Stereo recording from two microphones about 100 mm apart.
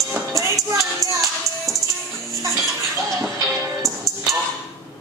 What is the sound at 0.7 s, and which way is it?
Music, 30° right (ahead or behind).